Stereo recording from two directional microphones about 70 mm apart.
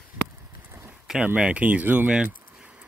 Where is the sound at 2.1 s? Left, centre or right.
Centre.